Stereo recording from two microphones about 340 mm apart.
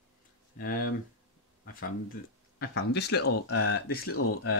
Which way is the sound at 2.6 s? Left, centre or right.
Left.